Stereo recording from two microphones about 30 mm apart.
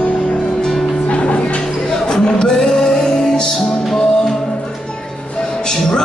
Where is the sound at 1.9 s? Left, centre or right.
Left.